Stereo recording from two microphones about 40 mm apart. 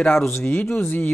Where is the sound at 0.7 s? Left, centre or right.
Left.